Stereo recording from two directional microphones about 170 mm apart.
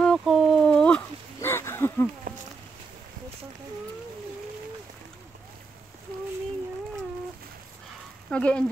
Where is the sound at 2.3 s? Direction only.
55° right (ahead or behind).